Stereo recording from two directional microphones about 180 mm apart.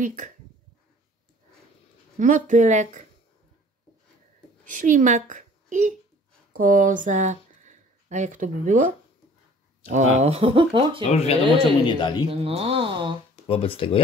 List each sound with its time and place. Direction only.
0.0 s speech: 45° right (ahead or behind)
2.1 s speech: 45° right (ahead or behind)
4.7 s a woman's voice: 45° right (ahead or behind)
10.1 s speech: 35° right (ahead or behind)
11.1 s speech: 30° left (ahead or behind)
12.3 s speech: 30° right (ahead or behind)
13.5 s speech: 30° left (ahead or behind)